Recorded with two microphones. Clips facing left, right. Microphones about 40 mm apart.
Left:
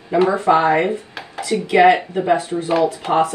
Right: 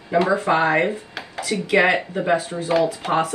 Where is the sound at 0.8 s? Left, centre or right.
Left.